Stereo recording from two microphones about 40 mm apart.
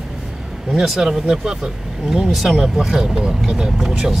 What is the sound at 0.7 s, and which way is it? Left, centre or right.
Speech, centre.